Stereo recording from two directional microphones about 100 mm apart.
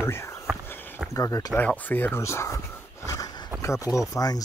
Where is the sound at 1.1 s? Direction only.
35° left (ahead or behind).